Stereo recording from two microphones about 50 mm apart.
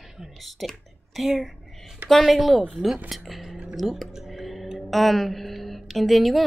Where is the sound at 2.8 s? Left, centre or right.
Centre.